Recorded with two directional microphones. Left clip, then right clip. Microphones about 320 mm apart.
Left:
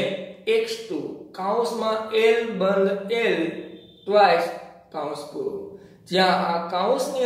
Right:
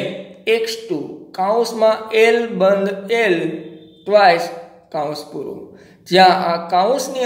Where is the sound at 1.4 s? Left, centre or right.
Right.